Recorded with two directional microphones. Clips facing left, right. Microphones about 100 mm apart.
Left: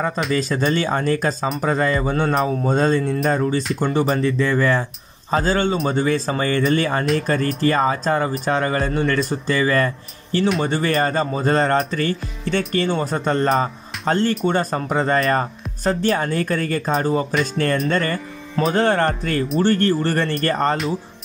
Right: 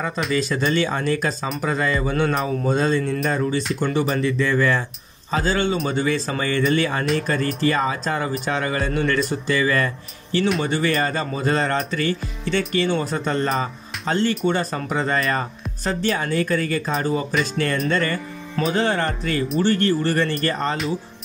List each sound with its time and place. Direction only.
0.3 s speech: 40° left (ahead or behind)